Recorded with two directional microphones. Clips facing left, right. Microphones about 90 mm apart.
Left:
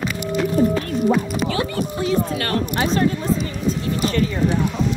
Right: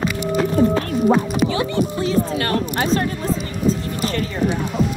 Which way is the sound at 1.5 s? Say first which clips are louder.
Right 2 dB; 20° right (ahead or behind).